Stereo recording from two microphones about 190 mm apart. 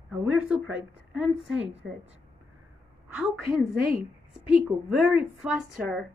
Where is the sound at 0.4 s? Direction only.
5° right (ahead or behind).